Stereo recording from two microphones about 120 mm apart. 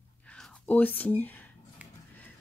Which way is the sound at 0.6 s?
15° left (ahead or behind).